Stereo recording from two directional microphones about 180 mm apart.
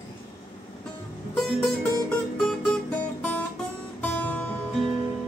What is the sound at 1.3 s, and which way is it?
Music, 5° left (ahead or behind).